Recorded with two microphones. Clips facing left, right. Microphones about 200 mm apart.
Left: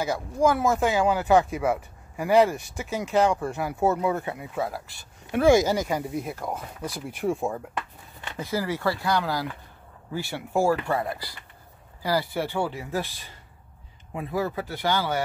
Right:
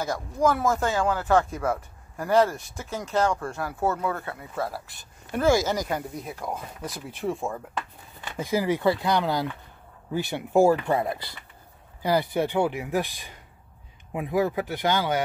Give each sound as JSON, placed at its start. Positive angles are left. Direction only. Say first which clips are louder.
{"t": 0.0, "sound": "speech", "louder": "left 1 dB", "side_deg": 10}
{"t": 8.4, "sound": "speech", "louder": "right 3 dB", "side_deg": -15}